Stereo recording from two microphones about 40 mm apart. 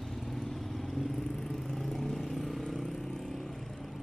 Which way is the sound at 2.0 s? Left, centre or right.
Centre.